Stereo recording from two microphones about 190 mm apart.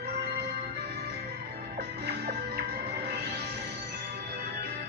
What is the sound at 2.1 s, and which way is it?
Music, 55° right (ahead or behind).